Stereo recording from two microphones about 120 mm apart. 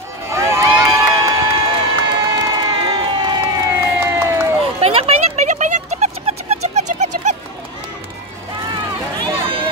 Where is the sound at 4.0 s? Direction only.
20° right (ahead or behind).